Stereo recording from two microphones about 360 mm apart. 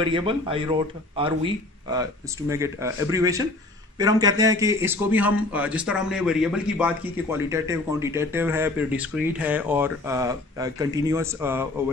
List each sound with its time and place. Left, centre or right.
0.0 s a man's voice: centre